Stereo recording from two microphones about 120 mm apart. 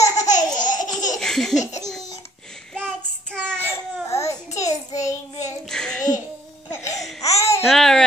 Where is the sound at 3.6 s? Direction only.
25° left (ahead or behind).